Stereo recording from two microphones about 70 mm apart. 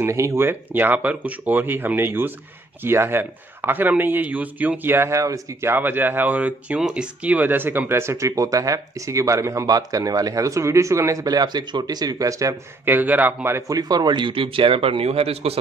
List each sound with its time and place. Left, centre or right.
0.0 s speech: right
0.4 s speech: right
5.7 s speech: right
11.2 s speech: right
12.8 s speech: right
13.6 s speech: right